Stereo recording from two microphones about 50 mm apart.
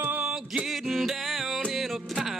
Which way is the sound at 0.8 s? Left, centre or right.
Centre.